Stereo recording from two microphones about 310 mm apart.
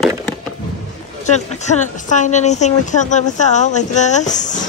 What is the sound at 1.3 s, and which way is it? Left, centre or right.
Speech, left.